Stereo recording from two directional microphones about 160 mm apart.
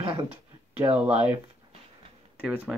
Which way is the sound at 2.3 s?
10° right (ahead or behind).